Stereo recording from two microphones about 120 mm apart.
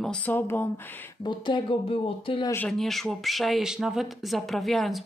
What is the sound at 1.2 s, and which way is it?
Speech, 40° left (ahead or behind).